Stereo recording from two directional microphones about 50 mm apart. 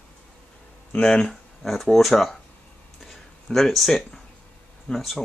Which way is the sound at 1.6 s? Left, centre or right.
Centre.